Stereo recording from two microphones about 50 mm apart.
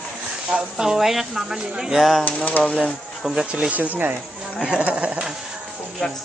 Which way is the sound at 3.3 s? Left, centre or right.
Centre.